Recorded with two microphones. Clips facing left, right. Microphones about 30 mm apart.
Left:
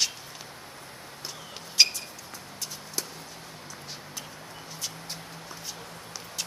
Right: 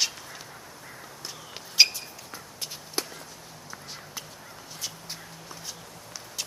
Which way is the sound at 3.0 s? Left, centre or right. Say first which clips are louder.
Right 4 dB; right.